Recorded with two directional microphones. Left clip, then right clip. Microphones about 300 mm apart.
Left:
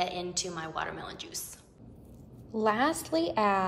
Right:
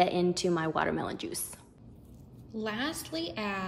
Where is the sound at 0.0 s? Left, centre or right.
Right.